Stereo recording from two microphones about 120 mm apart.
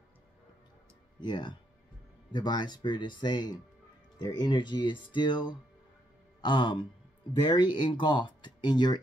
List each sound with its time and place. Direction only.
1.2 s speech: 35° left (ahead or behind)